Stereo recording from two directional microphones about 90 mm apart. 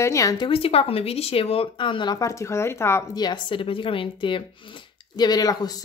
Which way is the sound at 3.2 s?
55° left (ahead or behind).